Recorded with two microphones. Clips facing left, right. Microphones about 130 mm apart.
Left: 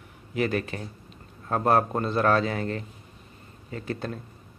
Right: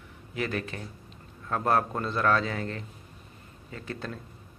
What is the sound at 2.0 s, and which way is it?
Speech, 45° left (ahead or behind).